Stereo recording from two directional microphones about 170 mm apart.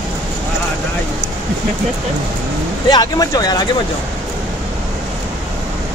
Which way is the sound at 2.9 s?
25° left (ahead or behind).